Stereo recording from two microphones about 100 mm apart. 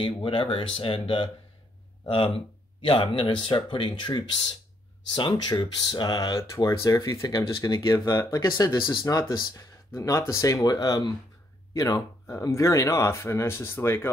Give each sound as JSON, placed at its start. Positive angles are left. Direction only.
{"t": 0.0, "sound": "speech", "side_deg": 60}
{"t": 9.9, "sound": "speech", "side_deg": 30}